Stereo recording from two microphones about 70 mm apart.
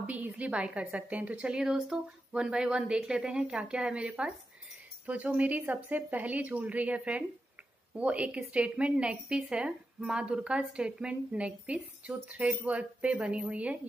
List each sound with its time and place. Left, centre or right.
0.0 s a woman's voice: centre